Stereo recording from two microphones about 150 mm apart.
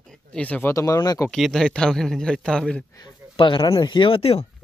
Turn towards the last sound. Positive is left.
turn(degrees=40)  # may be behind; listen again after turning